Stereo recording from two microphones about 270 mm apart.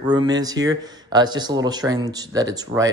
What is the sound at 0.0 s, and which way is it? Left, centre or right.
A man's voice, centre.